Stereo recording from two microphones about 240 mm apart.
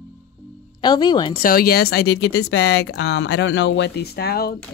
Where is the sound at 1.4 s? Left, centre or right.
Left.